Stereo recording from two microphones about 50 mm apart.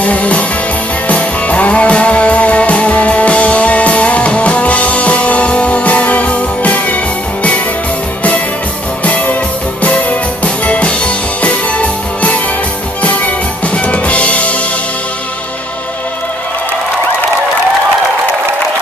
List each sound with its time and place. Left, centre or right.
0.0 s music: left
9.0 s music: left
13.8 s drum kit: left